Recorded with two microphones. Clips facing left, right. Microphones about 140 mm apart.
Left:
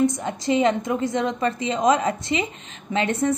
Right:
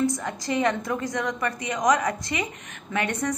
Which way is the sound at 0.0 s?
20° left (ahead or behind).